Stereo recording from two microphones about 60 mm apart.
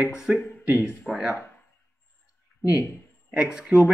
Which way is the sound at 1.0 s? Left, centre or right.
Centre.